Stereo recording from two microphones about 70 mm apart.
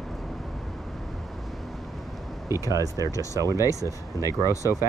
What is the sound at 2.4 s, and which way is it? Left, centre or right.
Speech, right.